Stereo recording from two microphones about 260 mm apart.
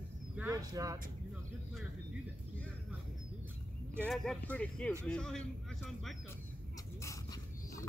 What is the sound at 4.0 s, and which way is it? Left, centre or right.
A man's voice, centre.